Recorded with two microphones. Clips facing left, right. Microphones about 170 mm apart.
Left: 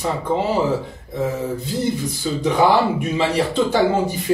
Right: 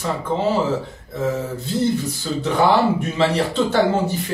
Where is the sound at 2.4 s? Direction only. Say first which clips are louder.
Left 1 dB; 10° left (ahead or behind).